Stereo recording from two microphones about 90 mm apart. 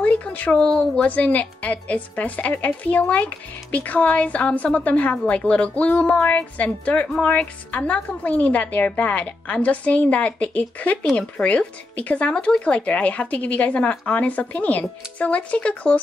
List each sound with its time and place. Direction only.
0.0 s a woman's voice: 15° left (ahead or behind)